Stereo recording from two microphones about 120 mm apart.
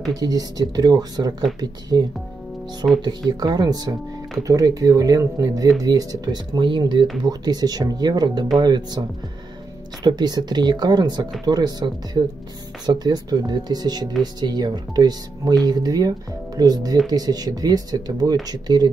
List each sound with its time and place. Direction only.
0.2 s speech: 30° right (ahead or behind)
10.0 s speech: 35° right (ahead or behind)